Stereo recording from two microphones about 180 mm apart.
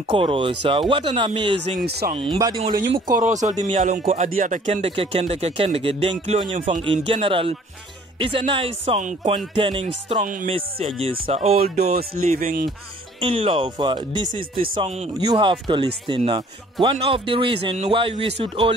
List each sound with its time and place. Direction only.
0.1 s a man's voice: 30° right (ahead or behind)
1.9 s speech: 65° right (ahead or behind)
2.1 s a man's voice: 25° right (ahead or behind)
3.1 s a man's voice: 45° right (ahead or behind)
11.9 s speech: 55° right (ahead or behind)
13.2 s a man's voice: 30° right (ahead or behind)